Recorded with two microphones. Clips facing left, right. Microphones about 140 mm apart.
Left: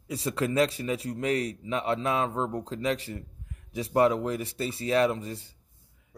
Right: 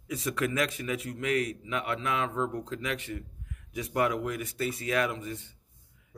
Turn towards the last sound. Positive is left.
turn(degrees=35)  # may be behind; listen again after turning